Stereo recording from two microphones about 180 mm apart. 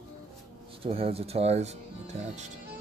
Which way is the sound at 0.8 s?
30° right (ahead or behind).